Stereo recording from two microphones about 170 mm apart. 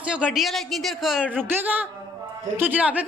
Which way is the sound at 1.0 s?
Centre (ahead or behind).